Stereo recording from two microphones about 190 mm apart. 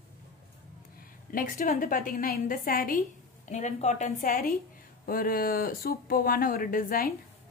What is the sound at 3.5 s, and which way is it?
A woman's voice, 40° left (ahead or behind).